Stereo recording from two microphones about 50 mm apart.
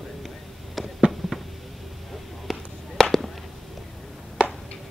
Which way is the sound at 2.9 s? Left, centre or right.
Centre.